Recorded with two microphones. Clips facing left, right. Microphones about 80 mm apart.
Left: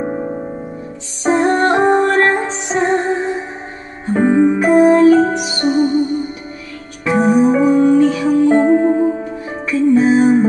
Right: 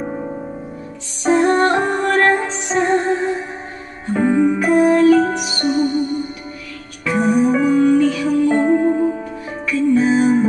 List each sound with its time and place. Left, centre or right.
1.2 s music: left